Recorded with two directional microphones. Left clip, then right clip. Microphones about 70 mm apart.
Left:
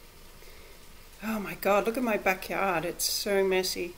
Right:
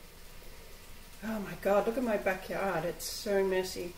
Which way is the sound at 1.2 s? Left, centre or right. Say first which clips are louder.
Left 4 dB; left.